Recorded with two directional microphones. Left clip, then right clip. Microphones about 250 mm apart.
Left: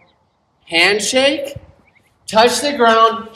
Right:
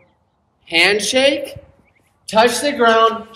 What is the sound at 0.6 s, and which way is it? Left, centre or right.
Speech, centre.